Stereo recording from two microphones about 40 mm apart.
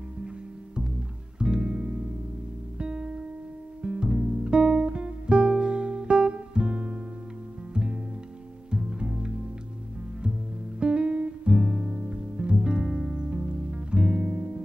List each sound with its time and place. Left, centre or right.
1.4 s music: right
10.8 s music: right